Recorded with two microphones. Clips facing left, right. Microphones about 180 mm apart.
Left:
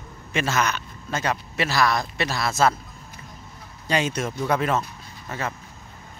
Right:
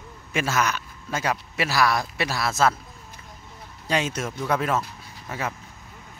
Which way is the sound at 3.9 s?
Centre (ahead or behind).